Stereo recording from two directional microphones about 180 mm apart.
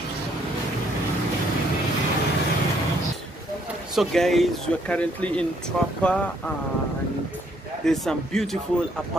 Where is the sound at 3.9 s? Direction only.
Centre (ahead or behind).